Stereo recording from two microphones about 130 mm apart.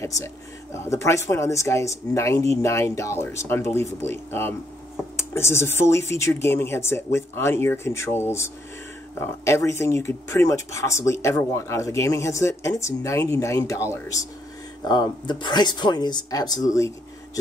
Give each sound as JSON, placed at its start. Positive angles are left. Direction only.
{"t": 0.0, "sound": "speech", "side_deg": 20}
{"t": 14.9, "sound": "speech", "side_deg": 35}